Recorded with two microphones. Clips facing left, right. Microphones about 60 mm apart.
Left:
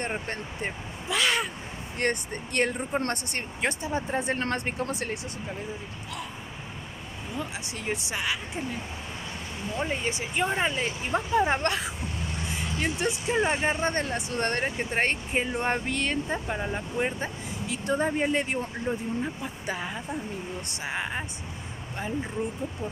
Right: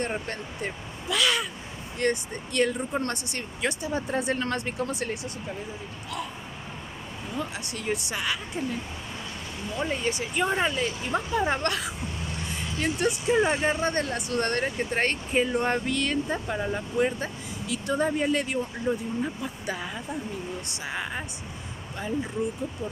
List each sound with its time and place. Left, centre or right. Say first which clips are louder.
0.0 s speech: right 1 dB; left
2.0 s speech: right 2 dB; left
7.8 s speech: right 1 dB; left
9.8 s speech: right 2 dB; left
10.8 s speech: right 1 dB; left
12.7 s speech: right 3 dB; centre
13.7 s speech: right 1 dB; left
16.3 s speech: right 1 dB; centre
18.9 s speech: right 2 dB; centre
19.6 s a woman's voice: left 2 dB; left